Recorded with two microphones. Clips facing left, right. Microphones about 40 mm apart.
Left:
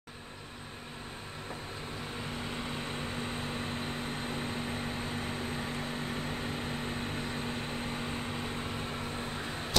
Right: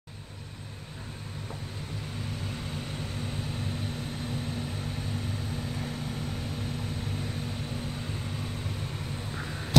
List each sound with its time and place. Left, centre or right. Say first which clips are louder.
3.9 s vehicle: even; left